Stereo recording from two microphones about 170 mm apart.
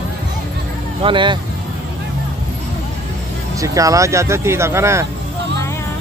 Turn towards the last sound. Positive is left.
turn(degrees=-15)  # may be behind; listen again after turning